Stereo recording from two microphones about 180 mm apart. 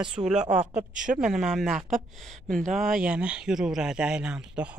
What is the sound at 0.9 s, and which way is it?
Speech, 45° right (ahead or behind).